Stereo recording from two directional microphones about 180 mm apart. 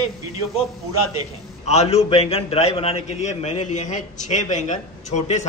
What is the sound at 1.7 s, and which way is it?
A man's voice, 35° left (ahead or behind).